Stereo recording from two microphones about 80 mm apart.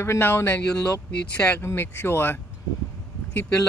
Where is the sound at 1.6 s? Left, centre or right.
Left.